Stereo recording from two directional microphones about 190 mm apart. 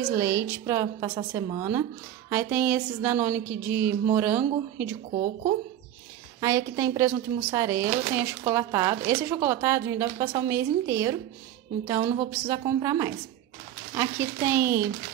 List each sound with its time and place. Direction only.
0.1 s a woman's voice: 15° right (ahead or behind)
5.1 s speech: 40° right (ahead or behind)
6.4 s a woman's voice: 20° right (ahead or behind)